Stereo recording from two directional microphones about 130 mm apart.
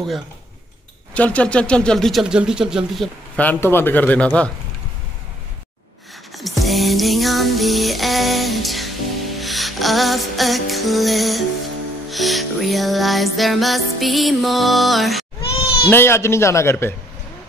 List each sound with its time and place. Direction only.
1.1 s music: 10° left (ahead or behind)
3.3 s a man's voice: 15° left (ahead or behind)
6.3 s music: centre (ahead or behind)
15.9 s a man's voice: 20° left (ahead or behind)